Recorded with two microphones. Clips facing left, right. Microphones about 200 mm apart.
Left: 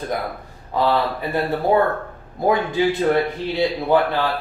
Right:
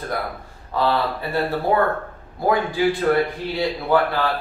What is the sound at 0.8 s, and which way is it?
Speech, 15° left (ahead or behind).